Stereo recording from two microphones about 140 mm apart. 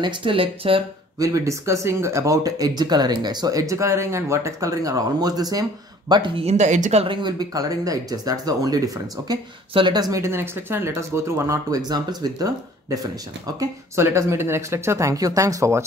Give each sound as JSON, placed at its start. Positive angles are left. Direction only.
{"t": 0.0, "sound": "speech", "side_deg": -40}
{"t": 1.2, "sound": "speech", "side_deg": -20}
{"t": 6.4, "sound": "speech", "side_deg": -55}
{"t": 7.1, "sound": "speech", "side_deg": -35}